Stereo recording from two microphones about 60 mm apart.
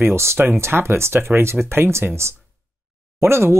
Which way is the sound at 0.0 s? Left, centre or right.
Right.